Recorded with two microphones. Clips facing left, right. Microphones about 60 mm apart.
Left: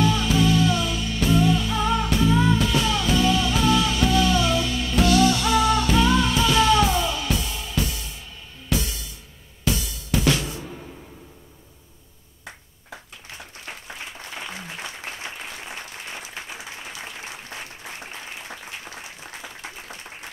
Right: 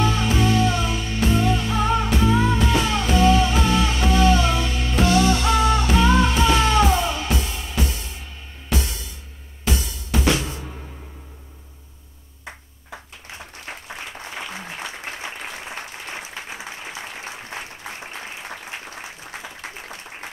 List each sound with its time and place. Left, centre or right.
0.0 s music: right